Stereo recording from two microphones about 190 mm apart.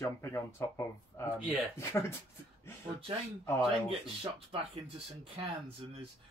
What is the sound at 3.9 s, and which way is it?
Speech, 30° right (ahead or behind).